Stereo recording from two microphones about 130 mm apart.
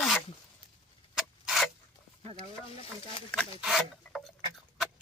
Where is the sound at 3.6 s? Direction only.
Centre (ahead or behind).